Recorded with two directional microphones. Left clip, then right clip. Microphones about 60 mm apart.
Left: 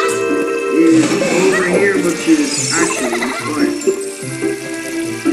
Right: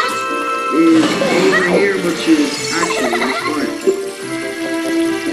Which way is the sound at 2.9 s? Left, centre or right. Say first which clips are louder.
Right 2 dB; left.